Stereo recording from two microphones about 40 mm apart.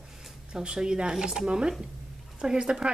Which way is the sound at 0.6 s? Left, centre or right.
Centre.